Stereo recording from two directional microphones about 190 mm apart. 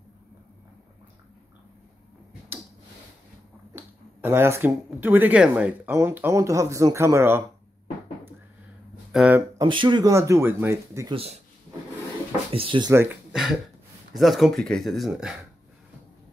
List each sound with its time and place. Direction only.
3.7 s speech: 10° right (ahead or behind)
9.1 s speech: 5° right (ahead or behind)
9.6 s speech: 25° right (ahead or behind)
12.5 s speech: 25° right (ahead or behind)
12.9 s speech: 10° right (ahead or behind)
14.1 s speech: centre (ahead or behind)